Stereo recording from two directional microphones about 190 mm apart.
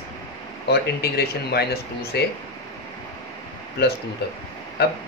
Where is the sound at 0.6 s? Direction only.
60° left (ahead or behind).